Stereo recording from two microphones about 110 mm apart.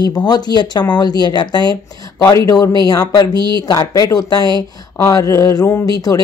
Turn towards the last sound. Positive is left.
turn(degrees=35)  # may be behind; listen again after turning